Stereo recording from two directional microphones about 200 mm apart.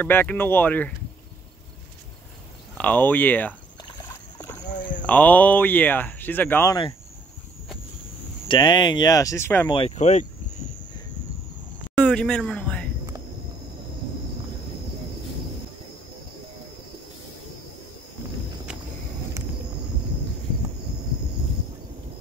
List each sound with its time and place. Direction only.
0.0 s speech: 10° left (ahead or behind)
2.8 s speech: 10° left (ahead or behind)
4.4 s rowboat: 10° left (ahead or behind)
5.0 s speech: 10° left (ahead or behind)
8.5 s speech: 20° left (ahead or behind)
9.7 s speech: 25° left (ahead or behind)
12.0 s speech: 5° left (ahead or behind)